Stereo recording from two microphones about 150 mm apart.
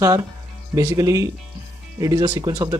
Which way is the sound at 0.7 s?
20° right (ahead or behind).